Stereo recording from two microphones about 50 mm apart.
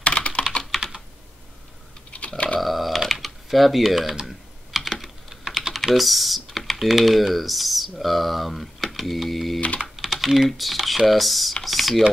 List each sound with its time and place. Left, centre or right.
0.0 s typing: left
2.0 s typing: left
2.6 s typing: centre
4.3 s computer keyboard: centre
5.0 s typing: centre
5.9 s speech: centre
9.9 s typing: centre
10.6 s speech: centre